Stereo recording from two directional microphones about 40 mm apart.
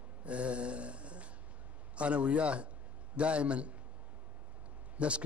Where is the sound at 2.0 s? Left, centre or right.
Right.